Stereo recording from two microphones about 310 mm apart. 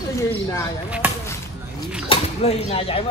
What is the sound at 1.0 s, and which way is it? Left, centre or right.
Speech, centre.